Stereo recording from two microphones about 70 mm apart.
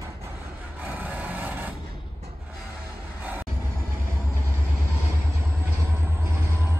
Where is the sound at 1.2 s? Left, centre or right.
Right.